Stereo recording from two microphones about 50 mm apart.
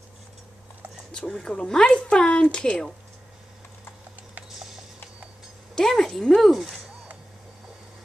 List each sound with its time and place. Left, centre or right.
1.4 s speech: centre
5.8 s speech: centre